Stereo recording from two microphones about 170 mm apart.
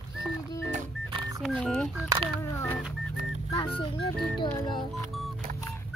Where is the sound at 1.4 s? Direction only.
Centre (ahead or behind).